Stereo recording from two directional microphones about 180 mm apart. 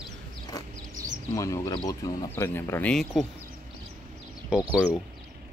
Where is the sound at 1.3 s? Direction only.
15° left (ahead or behind).